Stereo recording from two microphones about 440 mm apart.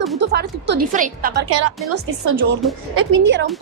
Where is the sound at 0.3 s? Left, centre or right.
Right.